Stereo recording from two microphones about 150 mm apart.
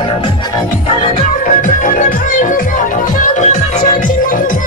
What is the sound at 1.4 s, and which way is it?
Music, 60° left (ahead or behind).